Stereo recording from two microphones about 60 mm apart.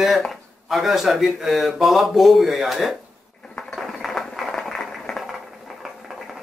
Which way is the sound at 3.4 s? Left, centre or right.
Centre.